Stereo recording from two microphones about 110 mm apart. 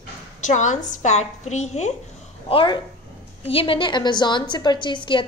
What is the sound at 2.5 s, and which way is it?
A woman's voice, 50° left (ahead or behind).